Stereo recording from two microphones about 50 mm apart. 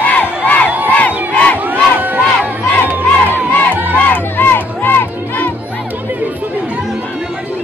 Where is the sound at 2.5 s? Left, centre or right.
Right.